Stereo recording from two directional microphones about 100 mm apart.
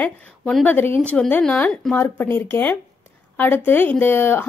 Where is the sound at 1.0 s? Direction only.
5° left (ahead or behind).